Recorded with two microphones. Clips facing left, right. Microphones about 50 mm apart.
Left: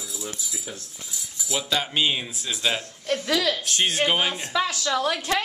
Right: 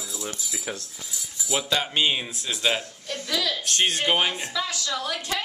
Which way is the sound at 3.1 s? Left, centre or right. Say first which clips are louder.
Left 5 dB; left.